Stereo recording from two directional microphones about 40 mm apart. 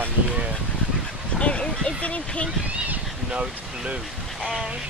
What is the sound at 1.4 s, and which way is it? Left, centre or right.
Speech, left.